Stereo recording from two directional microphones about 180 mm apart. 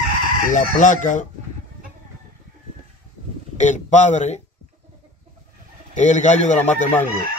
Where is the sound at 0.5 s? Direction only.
45° left (ahead or behind).